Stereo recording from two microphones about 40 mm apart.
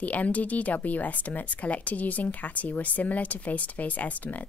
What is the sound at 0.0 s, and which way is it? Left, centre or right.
A woman's voice, left.